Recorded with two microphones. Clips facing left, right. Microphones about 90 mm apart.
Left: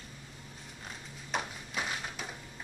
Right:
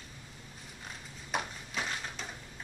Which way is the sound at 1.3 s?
5° left (ahead or behind).